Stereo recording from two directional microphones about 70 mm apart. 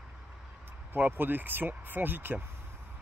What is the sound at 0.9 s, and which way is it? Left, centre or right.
Speech, right.